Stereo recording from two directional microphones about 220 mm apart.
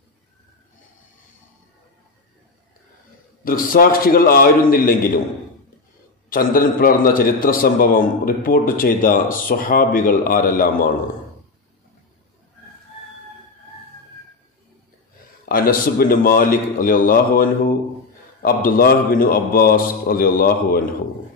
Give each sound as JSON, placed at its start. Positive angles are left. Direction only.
{"t": 3.4, "sound": "a man's voice", "side_deg": 40}
{"t": 6.3, "sound": "a man's voice", "side_deg": 40}
{"t": 15.4, "sound": "a man's voice", "side_deg": 40}